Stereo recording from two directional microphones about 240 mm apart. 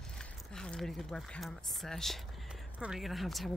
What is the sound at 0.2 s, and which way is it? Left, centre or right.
Speech, centre.